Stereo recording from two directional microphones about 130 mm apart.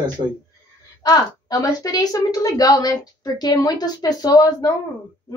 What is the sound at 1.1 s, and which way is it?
A woman's voice, 30° left (ahead or behind).